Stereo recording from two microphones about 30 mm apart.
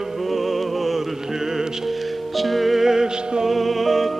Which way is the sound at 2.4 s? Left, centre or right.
Centre.